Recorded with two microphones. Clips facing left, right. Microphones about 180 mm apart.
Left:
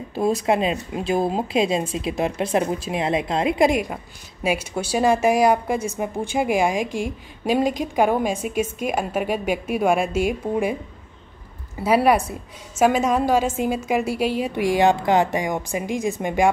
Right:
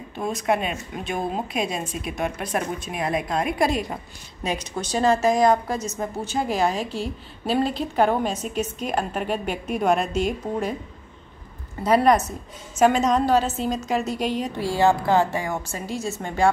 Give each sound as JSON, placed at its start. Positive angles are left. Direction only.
{"t": 0.1, "sound": "speech", "side_deg": 30}
{"t": 3.9, "sound": "a woman's voice", "side_deg": 10}
{"t": 11.8, "sound": "a woman's voice", "side_deg": 10}